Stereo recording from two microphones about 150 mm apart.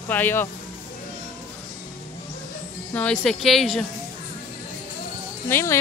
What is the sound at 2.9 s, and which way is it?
Speech, 10° left (ahead or behind).